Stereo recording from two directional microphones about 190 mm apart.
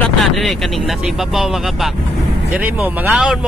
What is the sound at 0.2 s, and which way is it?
Vehicle, centre (ahead or behind).